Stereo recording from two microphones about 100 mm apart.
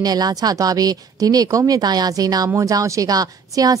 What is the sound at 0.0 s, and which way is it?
A woman's voice, 40° right (ahead or behind).